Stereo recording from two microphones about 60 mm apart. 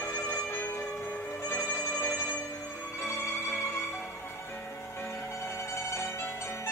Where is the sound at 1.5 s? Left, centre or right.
Left.